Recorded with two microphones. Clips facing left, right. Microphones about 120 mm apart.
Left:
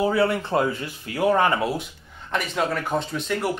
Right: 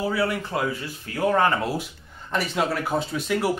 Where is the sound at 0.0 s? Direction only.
25° left (ahead or behind).